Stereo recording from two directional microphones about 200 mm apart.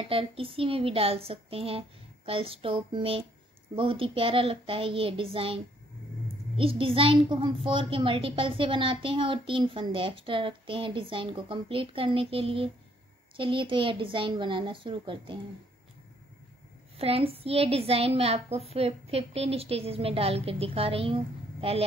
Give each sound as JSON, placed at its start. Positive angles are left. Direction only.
{"t": 0.0, "sound": "a child's voice", "side_deg": -30}
{"t": 16.9, "sound": "a child's voice", "side_deg": -30}